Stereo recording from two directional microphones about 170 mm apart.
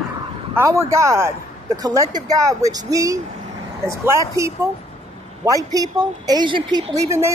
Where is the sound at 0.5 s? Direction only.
15° right (ahead or behind).